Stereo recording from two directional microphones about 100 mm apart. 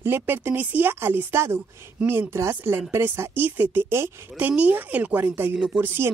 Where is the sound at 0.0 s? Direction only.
20° right (ahead or behind).